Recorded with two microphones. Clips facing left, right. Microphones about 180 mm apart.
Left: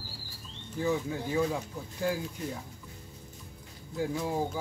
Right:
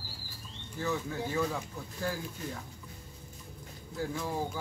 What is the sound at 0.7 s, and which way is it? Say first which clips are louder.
Speech: left 4 dB; 15° left (ahead or behind).